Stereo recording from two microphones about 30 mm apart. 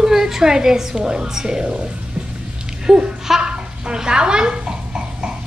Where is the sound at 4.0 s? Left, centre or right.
Right.